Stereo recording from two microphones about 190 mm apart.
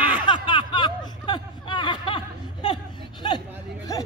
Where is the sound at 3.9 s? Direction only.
20° left (ahead or behind).